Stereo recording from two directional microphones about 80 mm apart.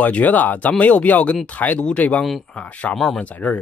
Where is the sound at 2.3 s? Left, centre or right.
Centre.